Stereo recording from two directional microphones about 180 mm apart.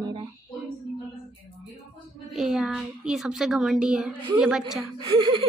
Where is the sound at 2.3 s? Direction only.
Centre (ahead or behind).